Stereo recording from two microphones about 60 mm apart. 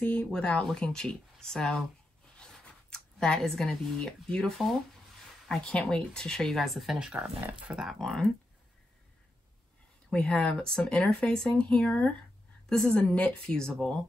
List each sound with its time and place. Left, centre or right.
0.0 s speech: centre
2.3 s a sound: centre
5.5 s speech: centre
7.0 s speech: centre
7.3 s speech: right
7.7 s speech: centre
8.0 s speech: centre
10.1 s speech: centre